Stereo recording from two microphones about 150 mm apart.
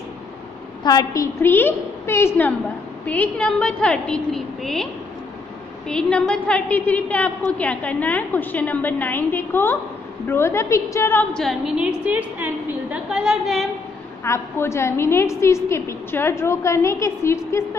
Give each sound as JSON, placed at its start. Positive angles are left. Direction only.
{"t": 0.8, "sound": "a woman's voice", "side_deg": 25}
{"t": 5.9, "sound": "a woman's voice", "side_deg": 5}
{"t": 11.3, "sound": "a woman's voice", "side_deg": 0}
{"t": 14.2, "sound": "a woman's voice", "side_deg": 20}